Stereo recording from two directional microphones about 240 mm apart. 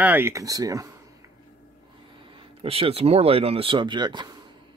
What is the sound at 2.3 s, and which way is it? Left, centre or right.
Speech, right.